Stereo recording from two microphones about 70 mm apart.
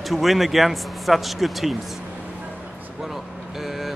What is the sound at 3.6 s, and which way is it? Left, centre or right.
Vehicle, centre.